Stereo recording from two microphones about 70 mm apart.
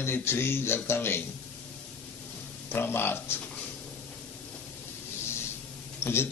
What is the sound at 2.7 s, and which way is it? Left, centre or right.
Speech, left.